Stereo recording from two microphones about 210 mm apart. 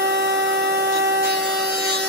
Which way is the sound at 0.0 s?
55° right (ahead or behind).